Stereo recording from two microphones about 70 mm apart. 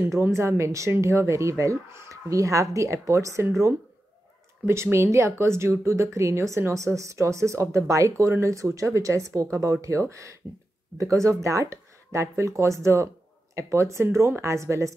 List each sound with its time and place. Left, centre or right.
0.2 s a woman's voice: right
4.9 s a woman's voice: right